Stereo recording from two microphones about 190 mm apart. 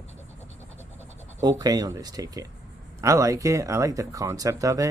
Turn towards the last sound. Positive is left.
turn(degrees=-15)  # may be behind; listen again after turning